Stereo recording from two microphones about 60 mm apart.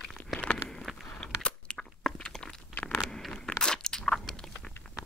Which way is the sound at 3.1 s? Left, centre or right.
Centre.